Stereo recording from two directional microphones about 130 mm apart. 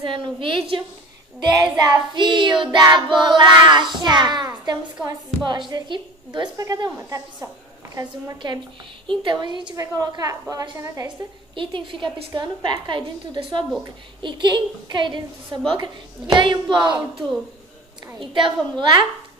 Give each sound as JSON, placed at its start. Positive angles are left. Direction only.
{"t": 0.0, "sound": "child singing", "side_deg": -40}
{"t": 1.5, "sound": "child singing", "side_deg": -30}
{"t": 10.5, "sound": "a woman's voice", "side_deg": -30}
{"t": 11.5, "sound": "child singing", "side_deg": -40}
{"t": 18.2, "sound": "child singing", "side_deg": -40}